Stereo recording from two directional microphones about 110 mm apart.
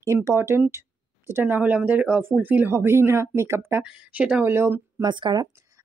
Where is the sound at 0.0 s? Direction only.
25° right (ahead or behind).